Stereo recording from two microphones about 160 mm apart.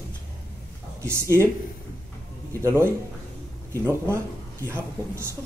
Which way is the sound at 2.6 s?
15° right (ahead or behind).